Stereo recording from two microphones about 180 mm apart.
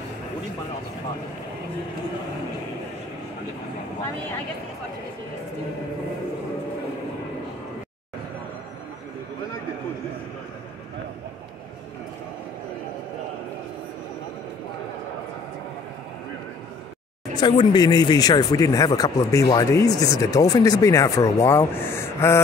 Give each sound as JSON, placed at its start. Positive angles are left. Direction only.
{"t": 17.4, "sound": "speech", "side_deg": 25}